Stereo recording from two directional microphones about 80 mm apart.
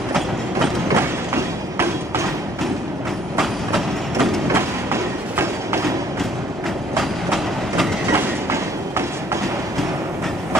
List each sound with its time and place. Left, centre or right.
0.9 s train: right
3.3 s train: centre
4.5 s train: right
7.0 s train: centre
8.1 s train: right